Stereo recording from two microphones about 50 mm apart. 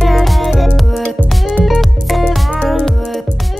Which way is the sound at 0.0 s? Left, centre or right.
Centre.